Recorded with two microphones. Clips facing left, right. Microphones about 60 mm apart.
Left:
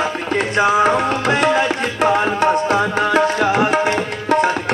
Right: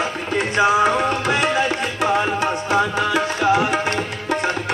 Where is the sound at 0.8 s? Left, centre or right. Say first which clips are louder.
Left 2 dB; left.